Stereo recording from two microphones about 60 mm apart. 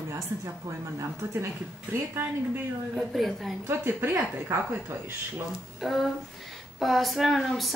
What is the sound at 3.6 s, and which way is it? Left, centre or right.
Speech, right.